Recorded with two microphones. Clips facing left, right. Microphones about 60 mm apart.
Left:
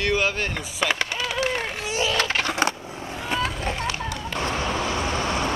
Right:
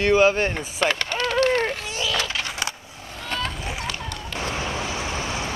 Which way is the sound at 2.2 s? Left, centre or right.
Left.